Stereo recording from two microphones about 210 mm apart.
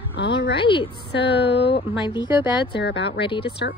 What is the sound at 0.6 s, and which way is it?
Speech, 25° left (ahead or behind).